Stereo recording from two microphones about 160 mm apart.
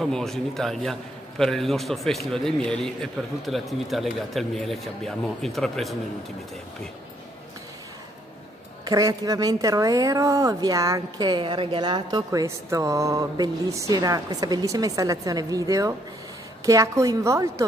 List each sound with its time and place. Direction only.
0.0 s a man's voice: centre (ahead or behind)
8.8 s speech: 20° right (ahead or behind)